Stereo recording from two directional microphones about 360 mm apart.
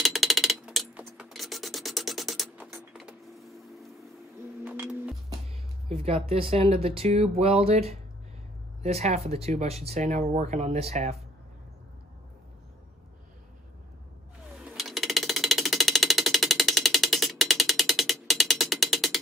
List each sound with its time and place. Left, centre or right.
0.0 s a sound: centre
4.6 s music: centre
5.9 s speech: centre
14.5 s ratchet: centre